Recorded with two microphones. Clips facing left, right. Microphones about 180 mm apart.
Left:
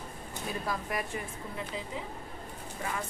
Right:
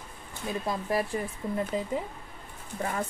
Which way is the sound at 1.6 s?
45° right (ahead or behind).